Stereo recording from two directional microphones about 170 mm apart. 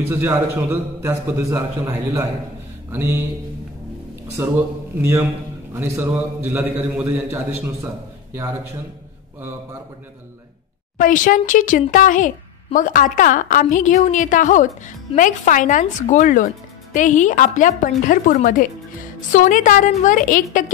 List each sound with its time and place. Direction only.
0.0 s a man's voice: 15° right (ahead or behind)
4.4 s a man's voice: 15° right (ahead or behind)
11.0 s a woman's voice: 50° left (ahead or behind)